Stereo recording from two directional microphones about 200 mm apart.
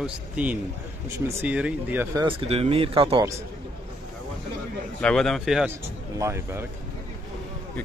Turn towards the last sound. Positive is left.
turn(degrees=-15)  # may be behind; listen again after turning